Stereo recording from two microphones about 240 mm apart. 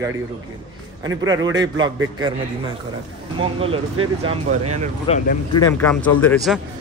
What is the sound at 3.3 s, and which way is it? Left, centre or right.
Speech, right.